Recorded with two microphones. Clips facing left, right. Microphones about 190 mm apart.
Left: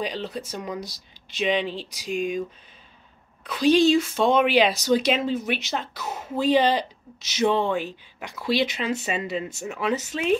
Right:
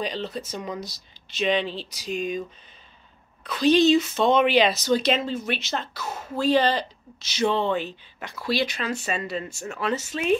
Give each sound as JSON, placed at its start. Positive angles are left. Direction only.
{"t": 0.0, "sound": "speech", "side_deg": 10}
{"t": 3.4, "sound": "speech", "side_deg": 10}